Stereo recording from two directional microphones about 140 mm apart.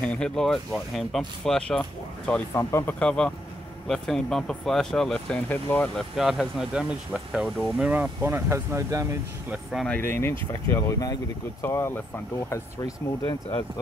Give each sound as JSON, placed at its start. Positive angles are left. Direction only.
{"t": 0.0, "sound": "speech", "side_deg": 5}
{"t": 5.9, "sound": "speech", "side_deg": 0}
{"t": 7.9, "sound": "speech", "side_deg": -15}
{"t": 9.5, "sound": "speech", "side_deg": 0}
{"t": 9.9, "sound": "speech", "side_deg": 15}